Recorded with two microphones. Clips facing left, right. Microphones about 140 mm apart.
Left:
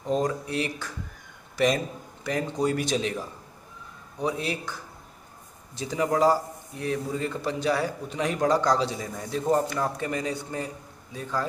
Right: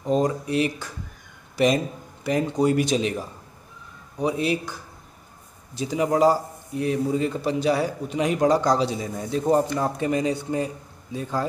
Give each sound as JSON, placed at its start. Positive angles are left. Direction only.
{"t": 0.0, "sound": "speech", "side_deg": -15}
{"t": 2.5, "sound": "a man's voice", "side_deg": -15}
{"t": 5.8, "sound": "a man's voice", "side_deg": -10}